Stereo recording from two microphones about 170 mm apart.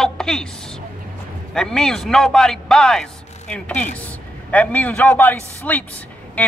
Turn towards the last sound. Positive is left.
turn(degrees=10)  # may be behind; listen again after turning